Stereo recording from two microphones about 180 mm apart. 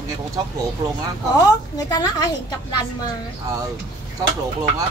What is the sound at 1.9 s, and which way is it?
Speech, 20° left (ahead or behind).